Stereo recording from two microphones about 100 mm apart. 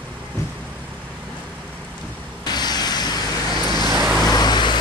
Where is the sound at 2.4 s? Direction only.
45° left (ahead or behind).